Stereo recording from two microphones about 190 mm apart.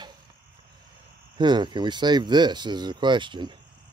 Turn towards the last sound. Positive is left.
turn(degrees=-25)  # may be behind; listen again after turning